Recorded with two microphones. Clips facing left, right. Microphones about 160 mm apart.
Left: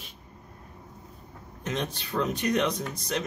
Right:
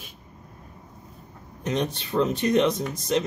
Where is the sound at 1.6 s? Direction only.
20° right (ahead or behind).